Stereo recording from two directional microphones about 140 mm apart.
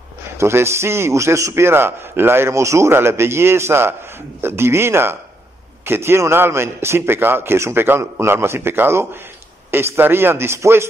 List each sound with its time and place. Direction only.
0.4 s a man's voice: 20° right (ahead or behind)